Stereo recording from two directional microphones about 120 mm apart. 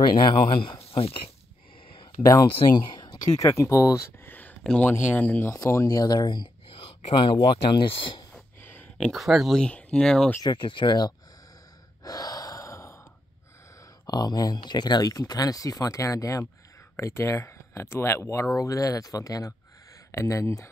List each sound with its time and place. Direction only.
0.0 s speech: 40° left (ahead or behind)
2.1 s speech: 40° left (ahead or behind); by 5.5 s 15° left (ahead or behind)
5.5 s speech: 25° left (ahead or behind); by 8.3 s 45° left (ahead or behind)
8.9 s speech: centre (ahead or behind)
10.4 s speech: 40° left (ahead or behind)
12.0 s gasp: 30° left (ahead or behind)
14.0 s speech: 35° left (ahead or behind)